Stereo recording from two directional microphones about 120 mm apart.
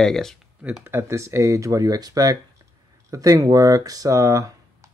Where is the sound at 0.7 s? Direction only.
20° right (ahead or behind).